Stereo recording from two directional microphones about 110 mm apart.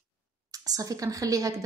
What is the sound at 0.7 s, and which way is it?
Speech, 30° right (ahead or behind).